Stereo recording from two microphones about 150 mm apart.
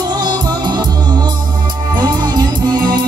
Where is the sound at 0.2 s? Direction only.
30° right (ahead or behind).